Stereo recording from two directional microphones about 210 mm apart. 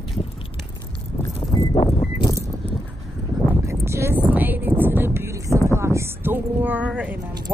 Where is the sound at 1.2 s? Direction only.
20° left (ahead or behind).